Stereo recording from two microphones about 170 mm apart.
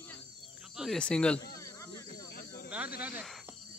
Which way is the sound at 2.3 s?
70° left (ahead or behind).